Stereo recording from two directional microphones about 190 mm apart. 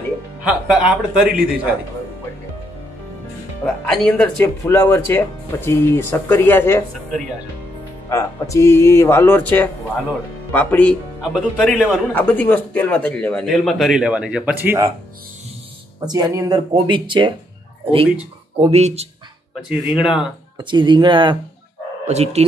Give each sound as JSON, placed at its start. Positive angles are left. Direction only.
{"t": 0.4, "sound": "speech", "side_deg": -5}
{"t": 3.6, "sound": "speech", "side_deg": 5}
{"t": 11.3, "sound": "speech", "side_deg": -5}
{"t": 12.1, "sound": "speech", "side_deg": 10}
{"t": 16.1, "sound": "speech", "side_deg": -20}
{"t": 18.6, "sound": "speech", "side_deg": -35}
{"t": 20.0, "sound": "speech", "side_deg": -5}
{"t": 20.5, "sound": "speech", "side_deg": -25}